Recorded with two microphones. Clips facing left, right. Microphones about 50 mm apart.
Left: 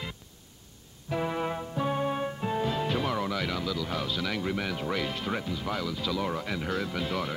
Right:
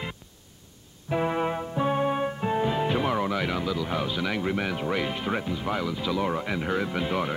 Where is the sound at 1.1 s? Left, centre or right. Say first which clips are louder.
Right 4 dB; centre.